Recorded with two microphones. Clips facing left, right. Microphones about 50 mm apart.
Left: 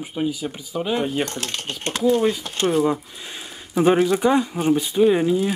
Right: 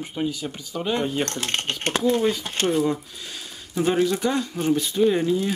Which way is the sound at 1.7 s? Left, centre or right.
Right.